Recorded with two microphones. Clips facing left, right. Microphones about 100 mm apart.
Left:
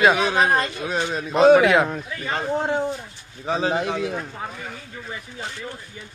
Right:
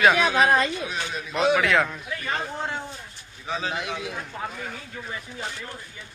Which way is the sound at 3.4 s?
35° left (ahead or behind).